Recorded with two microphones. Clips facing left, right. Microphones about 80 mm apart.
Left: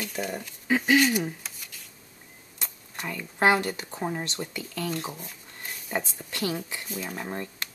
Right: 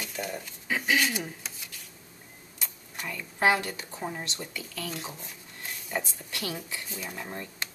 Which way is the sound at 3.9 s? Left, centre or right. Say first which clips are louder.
Left 4 dB; left.